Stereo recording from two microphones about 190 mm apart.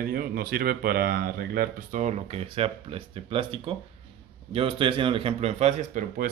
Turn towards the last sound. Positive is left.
turn(degrees=-40)  # may be behind; listen again after turning